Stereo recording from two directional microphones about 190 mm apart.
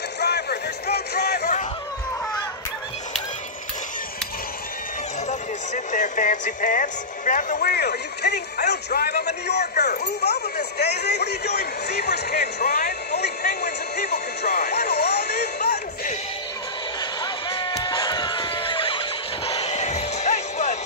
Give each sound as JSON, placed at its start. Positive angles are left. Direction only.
{"t": 0.2, "sound": "music", "side_deg": 55}
{"t": 5.9, "sound": "speech", "side_deg": 40}
{"t": 7.7, "sound": "a man's voice", "side_deg": 60}
{"t": 17.2, "sound": "music", "side_deg": 25}